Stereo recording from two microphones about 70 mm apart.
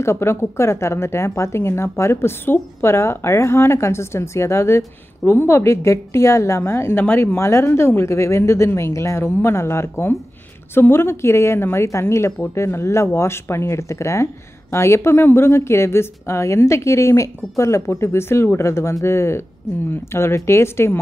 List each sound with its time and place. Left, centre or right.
0.0 s speech: left